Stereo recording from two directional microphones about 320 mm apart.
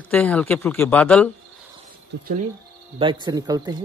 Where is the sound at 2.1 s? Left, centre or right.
Right.